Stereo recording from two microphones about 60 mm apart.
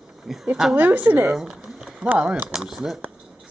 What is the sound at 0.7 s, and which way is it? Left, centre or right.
Speech, right.